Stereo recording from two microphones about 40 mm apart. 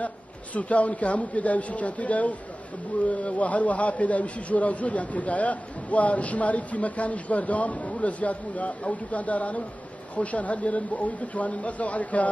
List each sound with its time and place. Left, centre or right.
0.6 s a man's voice: left